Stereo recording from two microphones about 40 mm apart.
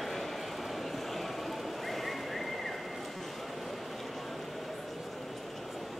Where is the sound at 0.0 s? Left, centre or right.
Centre.